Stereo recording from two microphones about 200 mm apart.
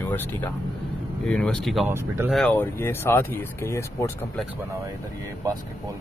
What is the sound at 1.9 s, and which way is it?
Speech, 10° right (ahead or behind).